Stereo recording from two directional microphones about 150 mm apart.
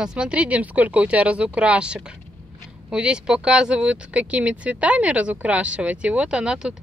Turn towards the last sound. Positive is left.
turn(degrees=-5)  # may be behind; listen again after turning